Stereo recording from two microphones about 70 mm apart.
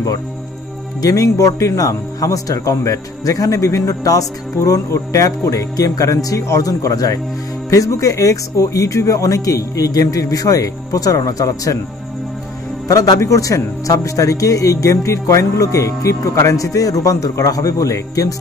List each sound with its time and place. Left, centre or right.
1.0 s speech: left
12.8 s a man's voice: left
13.2 s speech: left